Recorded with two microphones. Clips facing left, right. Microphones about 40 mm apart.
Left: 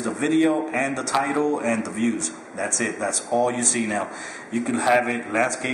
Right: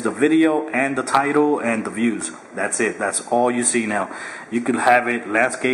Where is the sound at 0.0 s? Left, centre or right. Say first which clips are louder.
Right 4 dB; centre.